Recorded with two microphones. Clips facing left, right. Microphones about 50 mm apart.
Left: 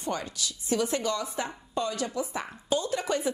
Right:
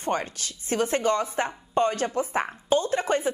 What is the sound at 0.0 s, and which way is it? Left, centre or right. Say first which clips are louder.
A woman's voice: right 4 dB; right.